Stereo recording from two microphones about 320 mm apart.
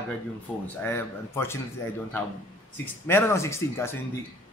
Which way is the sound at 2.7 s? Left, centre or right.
Centre.